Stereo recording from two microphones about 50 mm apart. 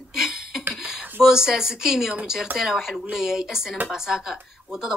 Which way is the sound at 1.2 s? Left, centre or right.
Centre.